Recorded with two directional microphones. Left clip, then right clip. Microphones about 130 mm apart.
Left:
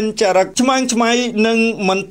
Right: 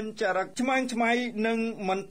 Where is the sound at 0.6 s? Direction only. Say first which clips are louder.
Left 11 dB; 20° left (ahead or behind).